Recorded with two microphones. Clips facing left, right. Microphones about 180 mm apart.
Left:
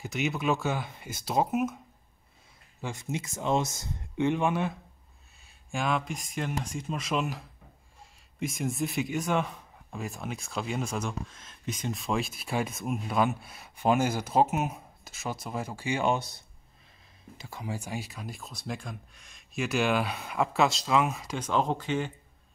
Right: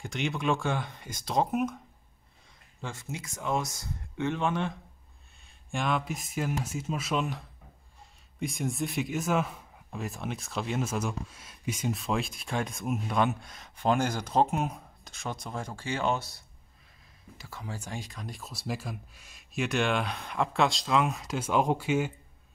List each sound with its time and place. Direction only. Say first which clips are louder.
0.0 s speech: left 1 dB; 5° left (ahead or behind)
2.8 s speech: left 4 dB; 15° left (ahead or behind); by 22.1 s 10° right (ahead or behind)